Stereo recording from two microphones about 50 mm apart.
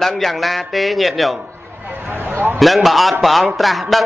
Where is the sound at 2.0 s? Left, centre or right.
Right.